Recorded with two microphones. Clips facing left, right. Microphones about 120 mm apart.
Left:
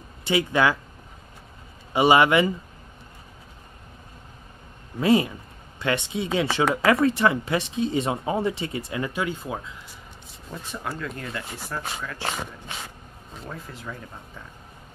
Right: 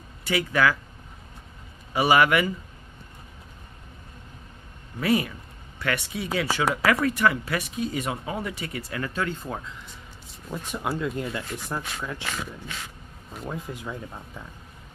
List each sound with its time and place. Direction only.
0.2 s speech: 25° left (ahead or behind)
2.0 s speech: 25° left (ahead or behind)
5.0 s speech: 25° left (ahead or behind); by 9.8 s 10° left (ahead or behind)
10.7 s speech: 15° right (ahead or behind)
13.3 s speech: 15° right (ahead or behind)